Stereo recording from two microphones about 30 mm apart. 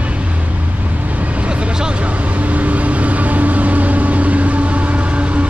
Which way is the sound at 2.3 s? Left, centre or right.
Right.